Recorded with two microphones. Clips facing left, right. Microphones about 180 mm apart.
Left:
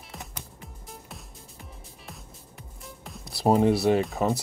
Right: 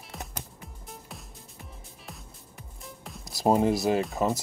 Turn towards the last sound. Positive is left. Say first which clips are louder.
# left 2 dB
turn(degrees=0)  # may be behind; listen again after turning